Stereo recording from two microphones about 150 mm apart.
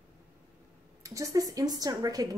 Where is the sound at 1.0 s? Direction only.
25° right (ahead or behind).